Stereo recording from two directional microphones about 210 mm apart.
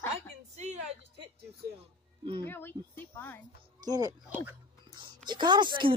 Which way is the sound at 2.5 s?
10° left (ahead or behind).